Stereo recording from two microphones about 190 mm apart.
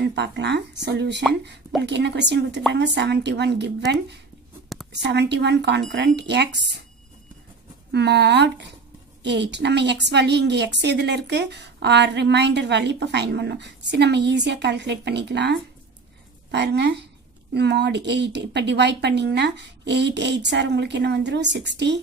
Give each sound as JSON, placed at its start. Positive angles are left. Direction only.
{"t": 0.0, "sound": "a woman's voice", "side_deg": -65}
{"t": 7.9, "sound": "a woman's voice", "side_deg": -60}
{"t": 16.5, "sound": "a woman's voice", "side_deg": -65}